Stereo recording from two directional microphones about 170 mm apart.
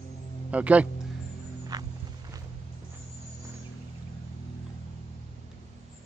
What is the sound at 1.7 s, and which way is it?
Music, 25° right (ahead or behind).